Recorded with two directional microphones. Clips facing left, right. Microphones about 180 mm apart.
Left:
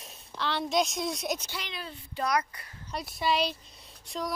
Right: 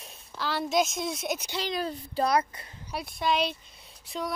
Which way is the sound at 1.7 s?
40° right (ahead or behind).